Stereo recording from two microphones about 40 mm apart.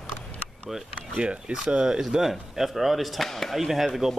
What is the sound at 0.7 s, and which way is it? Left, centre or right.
Speech, centre.